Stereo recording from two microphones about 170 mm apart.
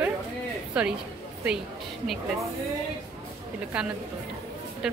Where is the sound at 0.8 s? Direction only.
5° right (ahead or behind).